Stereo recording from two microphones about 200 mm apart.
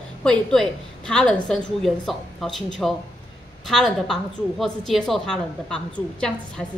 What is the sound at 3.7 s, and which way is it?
A woman's voice, centre (ahead or behind).